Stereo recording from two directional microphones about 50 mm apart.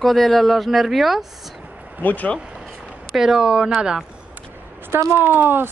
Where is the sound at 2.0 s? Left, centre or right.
Left.